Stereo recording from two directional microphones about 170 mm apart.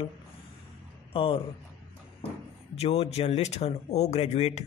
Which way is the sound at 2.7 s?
35° left (ahead or behind).